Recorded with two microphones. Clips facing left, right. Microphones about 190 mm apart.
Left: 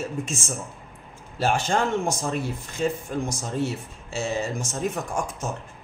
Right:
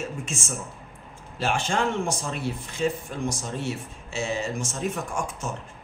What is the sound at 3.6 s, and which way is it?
A man's voice, 40° left (ahead or behind).